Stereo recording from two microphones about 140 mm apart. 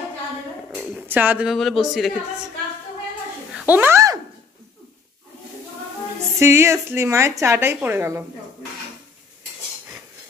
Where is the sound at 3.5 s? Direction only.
10° right (ahead or behind).